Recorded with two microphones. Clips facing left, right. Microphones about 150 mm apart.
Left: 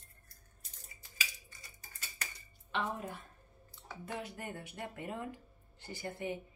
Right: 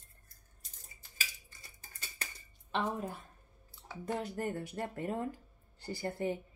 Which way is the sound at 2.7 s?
35° right (ahead or behind).